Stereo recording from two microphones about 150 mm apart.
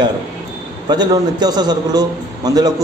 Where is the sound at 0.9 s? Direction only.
25° right (ahead or behind).